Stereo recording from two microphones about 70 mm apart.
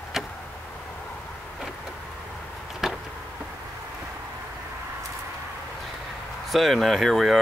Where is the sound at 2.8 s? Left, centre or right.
Centre.